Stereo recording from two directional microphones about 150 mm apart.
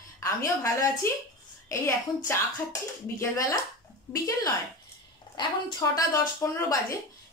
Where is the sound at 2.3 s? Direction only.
20° left (ahead or behind).